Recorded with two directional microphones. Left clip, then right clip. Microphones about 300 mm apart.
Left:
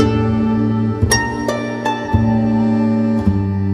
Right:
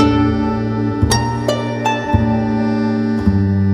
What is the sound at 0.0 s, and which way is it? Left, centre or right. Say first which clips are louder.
Music: right 3 dB; centre.